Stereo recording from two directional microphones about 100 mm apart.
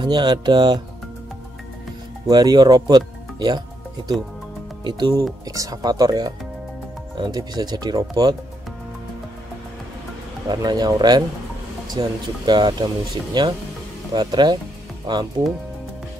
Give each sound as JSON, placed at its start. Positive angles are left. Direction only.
{"t": 0.0, "sound": "speech", "side_deg": -50}
{"t": 2.2, "sound": "speech", "side_deg": -40}
{"t": 4.8, "sound": "speech", "side_deg": -45}
{"t": 10.5, "sound": "speech", "side_deg": -45}